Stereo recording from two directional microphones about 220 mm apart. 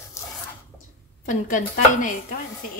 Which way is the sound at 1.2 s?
35° left (ahead or behind).